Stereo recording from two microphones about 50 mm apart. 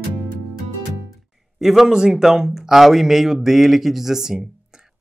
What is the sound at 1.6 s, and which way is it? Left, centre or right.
Speech, centre.